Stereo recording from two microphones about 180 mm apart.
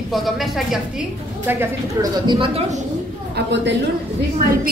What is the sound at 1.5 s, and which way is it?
Speech, 10° right (ahead or behind).